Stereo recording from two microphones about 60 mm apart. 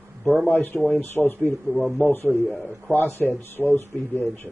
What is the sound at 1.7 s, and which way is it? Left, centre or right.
Speech, centre.